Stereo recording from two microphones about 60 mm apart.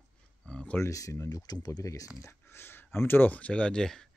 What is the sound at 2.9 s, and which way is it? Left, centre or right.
Speech, left.